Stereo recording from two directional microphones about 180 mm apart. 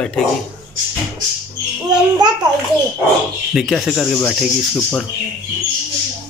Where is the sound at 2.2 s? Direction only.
25° right (ahead or behind).